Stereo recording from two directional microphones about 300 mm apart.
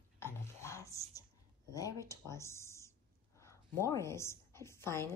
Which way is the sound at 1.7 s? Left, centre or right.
Centre.